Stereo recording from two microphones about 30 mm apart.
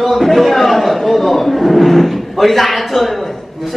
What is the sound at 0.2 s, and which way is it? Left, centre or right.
Speech, centre.